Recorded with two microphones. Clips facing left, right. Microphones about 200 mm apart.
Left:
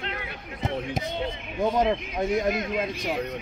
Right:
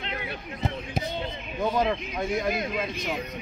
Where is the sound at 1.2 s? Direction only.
20° left (ahead or behind).